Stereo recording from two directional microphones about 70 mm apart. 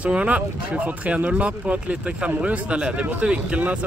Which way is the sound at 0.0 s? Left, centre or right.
Centre.